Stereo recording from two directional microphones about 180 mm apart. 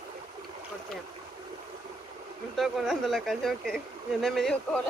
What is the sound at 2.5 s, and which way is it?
Speech, centre (ahead or behind).